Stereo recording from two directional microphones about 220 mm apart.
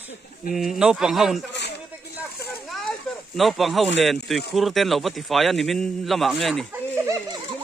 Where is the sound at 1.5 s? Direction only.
50° left (ahead or behind).